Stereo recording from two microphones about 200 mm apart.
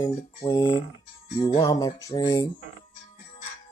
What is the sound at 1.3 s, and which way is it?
Music, 25° left (ahead or behind).